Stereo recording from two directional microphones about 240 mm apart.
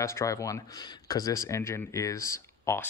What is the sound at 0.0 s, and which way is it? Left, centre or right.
Speech, centre.